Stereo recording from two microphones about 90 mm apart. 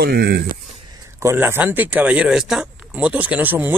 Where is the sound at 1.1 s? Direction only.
30° right (ahead or behind).